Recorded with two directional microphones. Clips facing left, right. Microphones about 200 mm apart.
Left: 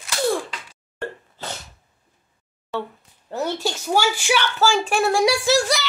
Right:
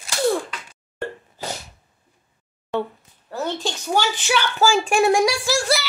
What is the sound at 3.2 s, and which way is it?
A woman's voice, 15° left (ahead or behind).